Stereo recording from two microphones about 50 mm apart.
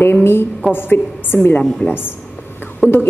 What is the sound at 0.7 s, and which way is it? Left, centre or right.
Speech, left.